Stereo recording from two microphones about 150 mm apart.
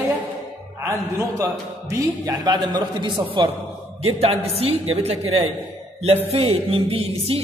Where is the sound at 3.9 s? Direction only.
40° right (ahead or behind).